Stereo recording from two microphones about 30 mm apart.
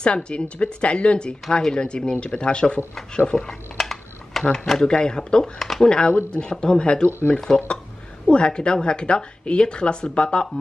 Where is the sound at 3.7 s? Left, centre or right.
Centre.